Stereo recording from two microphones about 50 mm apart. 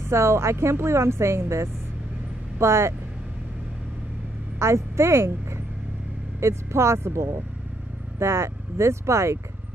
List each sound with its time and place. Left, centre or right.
0.0 s a woman's voice: right
4.6 s a woman's voice: right